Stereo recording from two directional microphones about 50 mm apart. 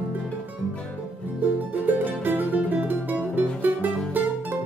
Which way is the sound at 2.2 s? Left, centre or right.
Right.